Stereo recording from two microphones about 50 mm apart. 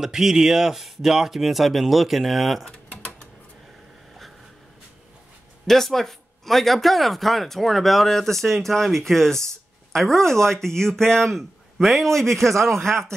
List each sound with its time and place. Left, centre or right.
0.0 s speech: centre
2.6 s typing: left
5.7 s speech: centre